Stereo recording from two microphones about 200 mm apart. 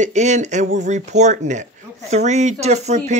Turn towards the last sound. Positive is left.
turn(degrees=-35)  # may be behind; listen again after turning